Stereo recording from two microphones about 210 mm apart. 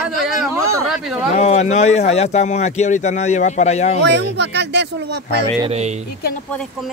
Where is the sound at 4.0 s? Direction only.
55° right (ahead or behind).